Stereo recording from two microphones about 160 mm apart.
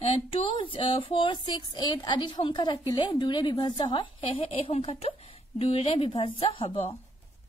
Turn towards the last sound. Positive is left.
turn(degrees=35)  # may be behind; listen again after turning